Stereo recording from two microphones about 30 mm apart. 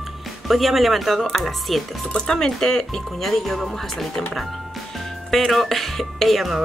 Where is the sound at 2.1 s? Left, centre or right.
Centre.